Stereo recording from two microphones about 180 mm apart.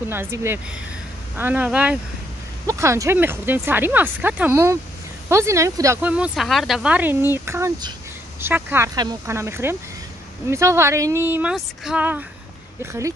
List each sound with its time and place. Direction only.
0.1 s speech: 15° right (ahead or behind)
6.1 s speech: 5° right (ahead or behind)